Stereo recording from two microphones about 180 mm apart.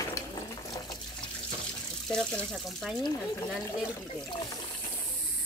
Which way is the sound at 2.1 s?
5° left (ahead or behind).